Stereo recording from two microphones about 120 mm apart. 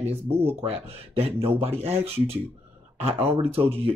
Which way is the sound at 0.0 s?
55° right (ahead or behind).